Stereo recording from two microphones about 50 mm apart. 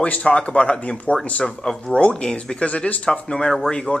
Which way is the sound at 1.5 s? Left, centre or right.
Centre.